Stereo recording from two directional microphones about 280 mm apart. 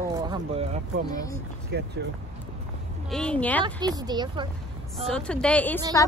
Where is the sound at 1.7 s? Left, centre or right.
Right.